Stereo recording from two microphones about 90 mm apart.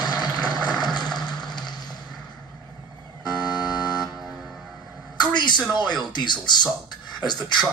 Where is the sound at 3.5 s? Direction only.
50° left (ahead or behind).